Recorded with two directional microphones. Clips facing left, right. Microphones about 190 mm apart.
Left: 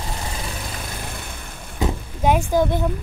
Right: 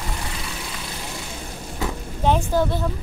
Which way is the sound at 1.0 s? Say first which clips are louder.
Right 1 dB; 55° left (ahead or behind).